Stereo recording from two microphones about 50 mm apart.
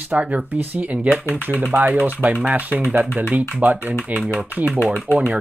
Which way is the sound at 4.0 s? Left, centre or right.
Right.